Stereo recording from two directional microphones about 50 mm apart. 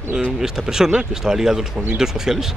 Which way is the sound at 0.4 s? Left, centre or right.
Centre.